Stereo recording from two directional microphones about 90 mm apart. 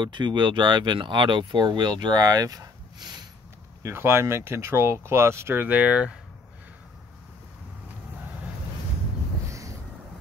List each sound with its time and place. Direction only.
0.0 s speech: 60° right (ahead or behind)
3.8 s speech: 25° right (ahead or behind)
9.5 s a sound: 35° right (ahead or behind)